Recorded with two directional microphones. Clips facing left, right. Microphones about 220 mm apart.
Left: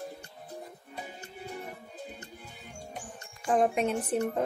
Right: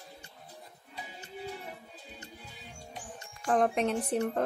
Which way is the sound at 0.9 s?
50° left (ahead or behind).